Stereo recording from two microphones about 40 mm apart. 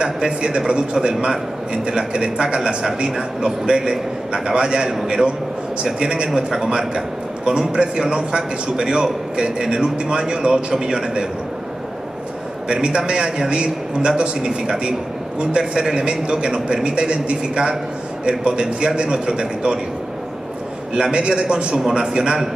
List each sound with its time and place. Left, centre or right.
0.0 s a man's voice: right
1.1 s a man's voice: centre
1.7 s a man's voice: centre
12.8 s a man's voice: right
20.9 s a man's voice: right